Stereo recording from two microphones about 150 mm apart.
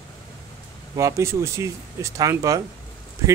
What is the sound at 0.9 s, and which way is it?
Speech, 20° right (ahead or behind).